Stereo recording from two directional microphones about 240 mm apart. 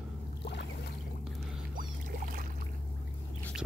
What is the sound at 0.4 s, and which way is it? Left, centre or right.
Boat, left.